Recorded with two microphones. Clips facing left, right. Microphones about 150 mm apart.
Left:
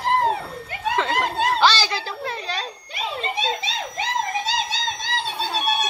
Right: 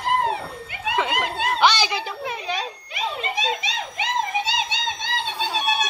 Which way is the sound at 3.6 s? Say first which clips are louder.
Left 1 dB; 35° left (ahead or behind).